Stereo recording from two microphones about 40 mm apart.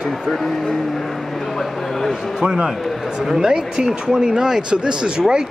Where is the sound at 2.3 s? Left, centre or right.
Centre.